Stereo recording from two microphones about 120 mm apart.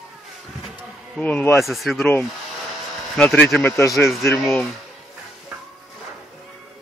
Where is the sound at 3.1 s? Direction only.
5° left (ahead or behind).